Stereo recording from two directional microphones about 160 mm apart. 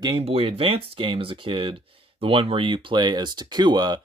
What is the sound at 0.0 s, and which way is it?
Speech, 35° right (ahead or behind).